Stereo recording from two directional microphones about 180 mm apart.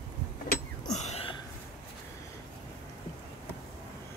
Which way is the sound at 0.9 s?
35° left (ahead or behind).